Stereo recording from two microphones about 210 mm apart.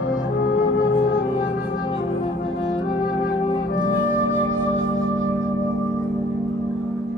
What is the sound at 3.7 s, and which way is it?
Music, 40° left (ahead or behind).